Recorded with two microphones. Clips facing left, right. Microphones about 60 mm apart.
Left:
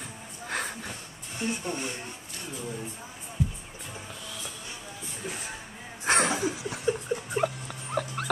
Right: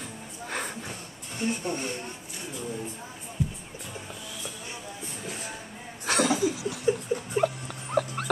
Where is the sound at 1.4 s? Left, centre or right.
Centre.